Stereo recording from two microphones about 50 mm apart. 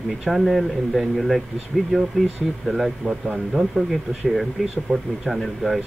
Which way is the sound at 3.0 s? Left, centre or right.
Right.